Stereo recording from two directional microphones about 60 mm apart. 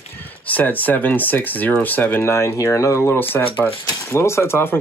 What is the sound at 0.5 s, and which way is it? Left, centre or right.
Speech, left.